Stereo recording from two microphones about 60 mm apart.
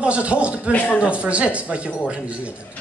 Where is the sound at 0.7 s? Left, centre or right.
Left.